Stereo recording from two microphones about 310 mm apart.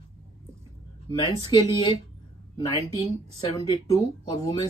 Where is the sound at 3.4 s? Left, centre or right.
Centre.